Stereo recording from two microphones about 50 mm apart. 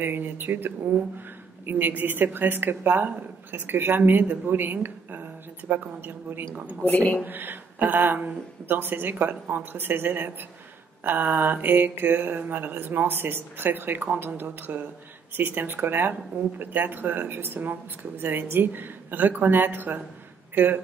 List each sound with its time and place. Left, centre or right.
0.0 s speech: right